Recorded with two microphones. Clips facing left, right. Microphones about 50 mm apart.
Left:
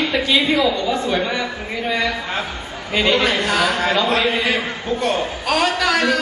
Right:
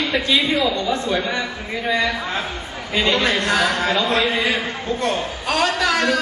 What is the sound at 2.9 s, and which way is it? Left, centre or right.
A man's voice, centre.